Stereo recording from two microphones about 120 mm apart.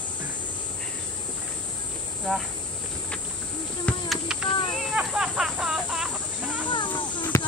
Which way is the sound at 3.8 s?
Centre (ahead or behind).